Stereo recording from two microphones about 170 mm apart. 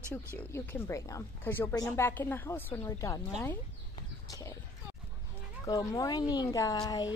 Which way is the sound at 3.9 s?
20° left (ahead or behind).